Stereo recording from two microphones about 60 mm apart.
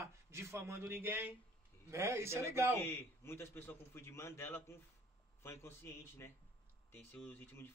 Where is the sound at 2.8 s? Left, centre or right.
Left.